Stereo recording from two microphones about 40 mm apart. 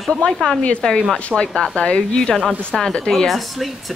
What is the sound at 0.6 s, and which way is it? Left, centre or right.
A woman's voice, left.